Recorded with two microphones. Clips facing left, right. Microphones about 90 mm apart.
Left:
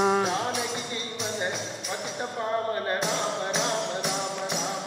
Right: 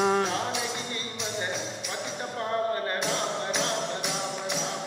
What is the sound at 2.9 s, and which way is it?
Music, 20° left (ahead or behind).